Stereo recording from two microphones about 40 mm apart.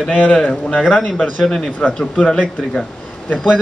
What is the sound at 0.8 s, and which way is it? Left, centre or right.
Speech, centre.